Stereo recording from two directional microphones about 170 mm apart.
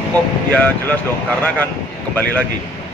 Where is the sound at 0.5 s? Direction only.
10° left (ahead or behind).